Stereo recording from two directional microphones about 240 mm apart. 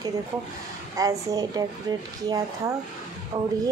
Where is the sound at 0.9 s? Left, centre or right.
Centre.